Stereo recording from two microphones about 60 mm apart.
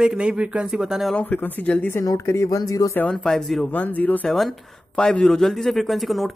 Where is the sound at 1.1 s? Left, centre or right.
Left.